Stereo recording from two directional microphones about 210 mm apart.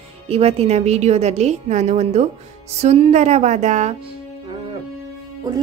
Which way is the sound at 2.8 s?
35° right (ahead or behind).